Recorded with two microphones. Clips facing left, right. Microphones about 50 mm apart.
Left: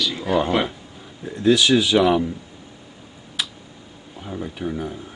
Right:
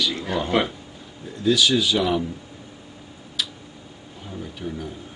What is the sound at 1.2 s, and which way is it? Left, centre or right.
Speech, left.